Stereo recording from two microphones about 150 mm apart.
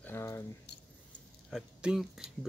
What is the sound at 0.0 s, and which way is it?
Keys jangling, 15° left (ahead or behind).